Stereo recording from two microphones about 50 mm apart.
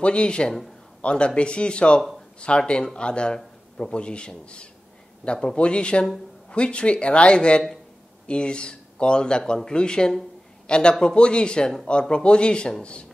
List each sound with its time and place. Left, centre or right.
0.0 s a man's voice: left